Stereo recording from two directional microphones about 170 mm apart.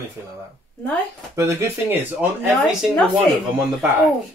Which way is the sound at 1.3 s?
15° right (ahead or behind).